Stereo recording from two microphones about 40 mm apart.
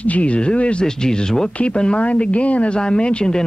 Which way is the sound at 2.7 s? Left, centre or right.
Left.